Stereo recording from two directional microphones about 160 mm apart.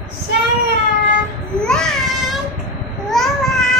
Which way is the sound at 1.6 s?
5° left (ahead or behind).